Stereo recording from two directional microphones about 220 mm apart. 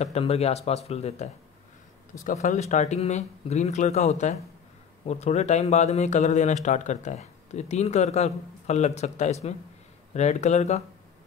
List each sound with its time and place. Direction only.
0.0 s speech: 30° left (ahead or behind)